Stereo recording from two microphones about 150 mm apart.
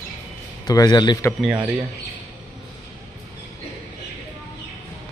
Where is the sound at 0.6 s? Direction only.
25° left (ahead or behind).